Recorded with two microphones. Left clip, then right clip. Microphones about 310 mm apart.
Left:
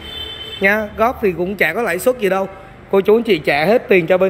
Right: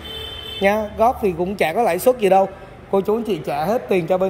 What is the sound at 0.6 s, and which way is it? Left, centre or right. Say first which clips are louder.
Speech: left 2 dB; centre.